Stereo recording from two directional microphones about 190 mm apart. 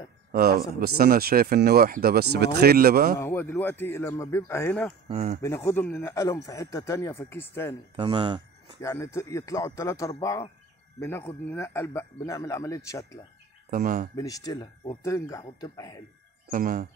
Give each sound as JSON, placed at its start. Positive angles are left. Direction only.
{"t": 0.3, "sound": "speech", "side_deg": -50}
{"t": 3.2, "sound": "a man's voice", "side_deg": 10}
{"t": 5.1, "sound": "speech", "side_deg": -35}
{"t": 5.7, "sound": "a man's voice", "side_deg": 10}
{"t": 7.9, "sound": "speech", "side_deg": -25}
{"t": 8.8, "sound": "a man's voice", "side_deg": 15}
{"t": 13.7, "sound": "speech", "side_deg": -45}
{"t": 14.1, "sound": "a man's voice", "side_deg": 20}
{"t": 16.4, "sound": "speech", "side_deg": -45}